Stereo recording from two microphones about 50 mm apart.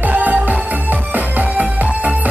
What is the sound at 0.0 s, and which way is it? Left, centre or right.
Music, right.